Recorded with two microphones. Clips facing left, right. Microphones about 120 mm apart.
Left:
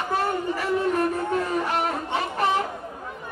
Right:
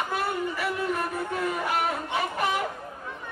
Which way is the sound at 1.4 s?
35° left (ahead or behind).